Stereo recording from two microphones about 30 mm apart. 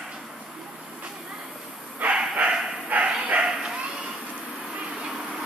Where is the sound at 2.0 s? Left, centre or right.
Right.